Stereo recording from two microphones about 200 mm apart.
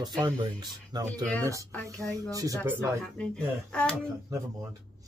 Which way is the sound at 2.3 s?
15° right (ahead or behind).